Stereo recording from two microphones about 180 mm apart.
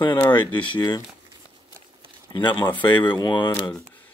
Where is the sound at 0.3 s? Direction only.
25° left (ahead or behind).